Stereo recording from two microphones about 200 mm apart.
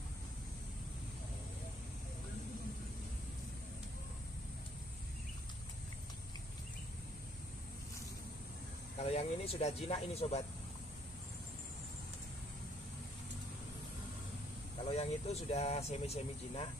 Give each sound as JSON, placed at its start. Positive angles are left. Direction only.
{"t": 8.9, "sound": "speech", "side_deg": 30}
{"t": 14.9, "sound": "speech", "side_deg": 30}